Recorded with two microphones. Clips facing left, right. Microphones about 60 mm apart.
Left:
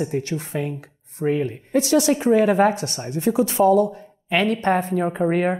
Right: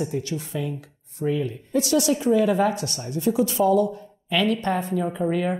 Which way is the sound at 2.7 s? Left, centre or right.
Left.